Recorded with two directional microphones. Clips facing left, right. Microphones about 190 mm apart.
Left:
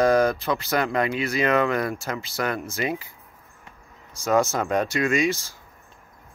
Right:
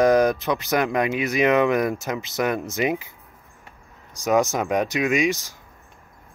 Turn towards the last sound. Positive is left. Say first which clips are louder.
# right 1 dB
turn(degrees=-15)  # may be behind; listen again after turning